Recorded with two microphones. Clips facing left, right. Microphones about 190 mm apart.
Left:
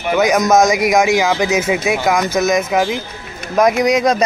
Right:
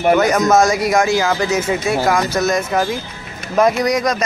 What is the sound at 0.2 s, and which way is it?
Speech, 15° left (ahead or behind).